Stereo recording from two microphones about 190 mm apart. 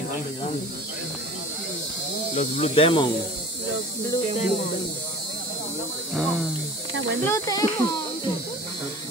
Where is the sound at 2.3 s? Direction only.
35° left (ahead or behind).